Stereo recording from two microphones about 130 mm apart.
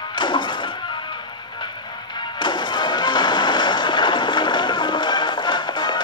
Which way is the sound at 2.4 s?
35° left (ahead or behind).